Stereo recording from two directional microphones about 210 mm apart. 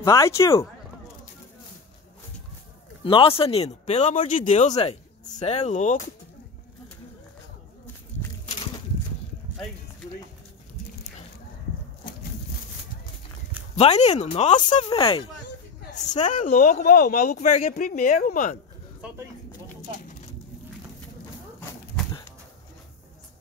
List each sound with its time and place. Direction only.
0.0 s speech: 15° left (ahead or behind)
3.0 s speech: 25° left (ahead or behind)
8.5 s a sound: 25° left (ahead or behind)
13.7 s speech: 30° left (ahead or behind)
17.4 s speech: 30° left (ahead or behind)
18.9 s speech: 5° right (ahead or behind)
22.0 s livestock: 5° left (ahead or behind)